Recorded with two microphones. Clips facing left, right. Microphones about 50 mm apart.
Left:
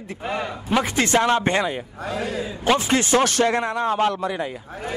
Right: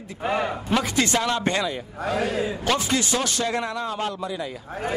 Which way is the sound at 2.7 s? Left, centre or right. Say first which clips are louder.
Left 5 dB; left.